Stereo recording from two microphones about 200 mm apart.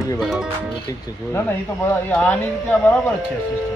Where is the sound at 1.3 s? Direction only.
10° left (ahead or behind).